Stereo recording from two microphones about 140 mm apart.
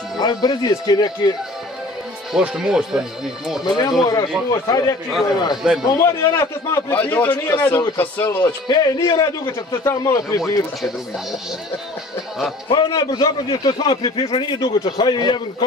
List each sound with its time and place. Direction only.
0.2 s a man's voice: 30° left (ahead or behind)
2.3 s speech: 5° right (ahead or behind)
3.6 s a man's voice: 30° left (ahead or behind)
5.6 s speech: 5° right (ahead or behind)
5.9 s a man's voice: 25° left (ahead or behind)
8.5 s a man's voice: 30° left (ahead or behind)
12.6 s a man's voice: 30° left (ahead or behind)